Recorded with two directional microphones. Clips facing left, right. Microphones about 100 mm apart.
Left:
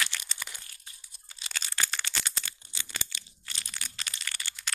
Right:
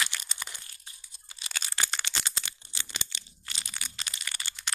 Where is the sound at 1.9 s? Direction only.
25° right (ahead or behind).